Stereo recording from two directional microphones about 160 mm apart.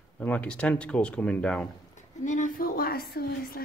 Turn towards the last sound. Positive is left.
turn(degrees=70)  # may be behind; listen again after turning